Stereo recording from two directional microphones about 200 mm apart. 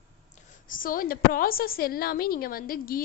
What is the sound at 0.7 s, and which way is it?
A woman's voice, 45° left (ahead or behind).